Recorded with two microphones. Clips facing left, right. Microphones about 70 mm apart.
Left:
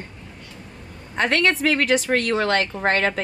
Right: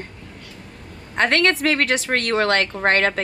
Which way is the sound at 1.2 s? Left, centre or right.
Right.